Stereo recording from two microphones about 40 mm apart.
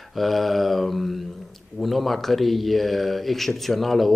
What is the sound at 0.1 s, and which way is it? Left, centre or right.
Speech, centre.